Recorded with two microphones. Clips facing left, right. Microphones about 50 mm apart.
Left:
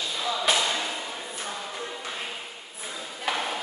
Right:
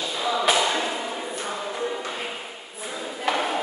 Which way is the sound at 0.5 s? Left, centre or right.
Centre.